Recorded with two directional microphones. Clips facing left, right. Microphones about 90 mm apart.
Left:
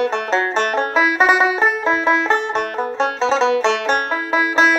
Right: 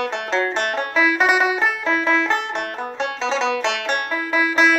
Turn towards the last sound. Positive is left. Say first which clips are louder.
# left 2 dB
turn(degrees=30)  # may be behind; listen again after turning